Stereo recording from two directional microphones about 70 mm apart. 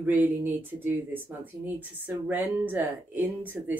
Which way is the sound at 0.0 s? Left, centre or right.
Right.